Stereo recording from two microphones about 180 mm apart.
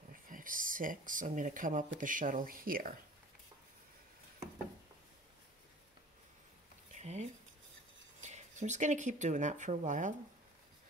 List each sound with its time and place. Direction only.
0.1 s speech: 50° right (ahead or behind)
6.9 s a sound: 40° right (ahead or behind)
8.2 s speech: 40° right (ahead or behind)